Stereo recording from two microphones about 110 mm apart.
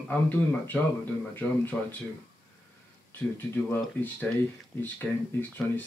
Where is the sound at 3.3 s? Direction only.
20° left (ahead or behind).